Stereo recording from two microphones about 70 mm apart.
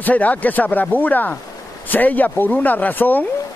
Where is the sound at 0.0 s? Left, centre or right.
Left.